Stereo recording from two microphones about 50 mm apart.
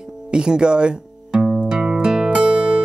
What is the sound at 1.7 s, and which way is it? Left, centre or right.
Music, centre.